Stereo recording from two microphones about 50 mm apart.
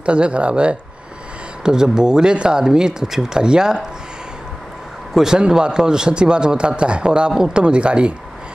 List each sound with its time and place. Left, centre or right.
0.0 s speech: right
5.1 s speech: centre